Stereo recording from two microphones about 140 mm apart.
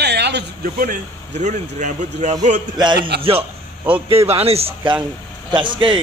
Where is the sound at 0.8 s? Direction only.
65° right (ahead or behind).